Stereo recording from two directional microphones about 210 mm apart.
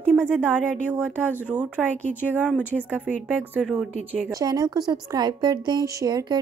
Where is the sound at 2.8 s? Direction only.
5° right (ahead or behind).